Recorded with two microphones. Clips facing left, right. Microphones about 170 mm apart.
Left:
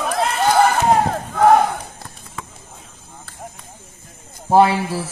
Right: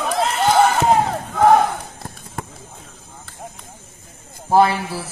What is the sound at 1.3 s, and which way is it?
Battle cry, centre (ahead or behind).